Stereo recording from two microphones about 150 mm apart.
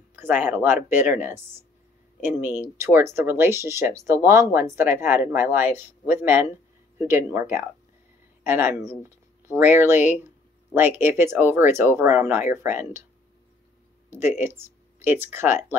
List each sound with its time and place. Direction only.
0.1 s speech: 10° right (ahead or behind)
14.1 s speech: 15° right (ahead or behind)